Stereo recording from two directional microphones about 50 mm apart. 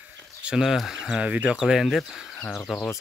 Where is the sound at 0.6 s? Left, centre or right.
Centre; by 1.6 s right.